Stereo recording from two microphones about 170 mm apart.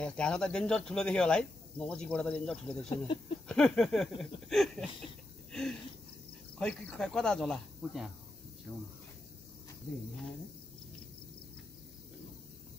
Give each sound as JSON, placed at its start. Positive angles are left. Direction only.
{"t": 0.0, "sound": "speech", "side_deg": 5}
{"t": 5.5, "sound": "a sound", "side_deg": 5}
{"t": 6.6, "sound": "speech", "side_deg": 5}